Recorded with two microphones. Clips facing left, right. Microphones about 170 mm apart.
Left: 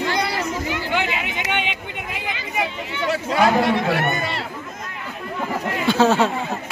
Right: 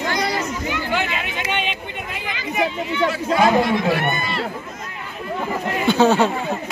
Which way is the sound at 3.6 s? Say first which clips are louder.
Even; 75° left (ahead or behind).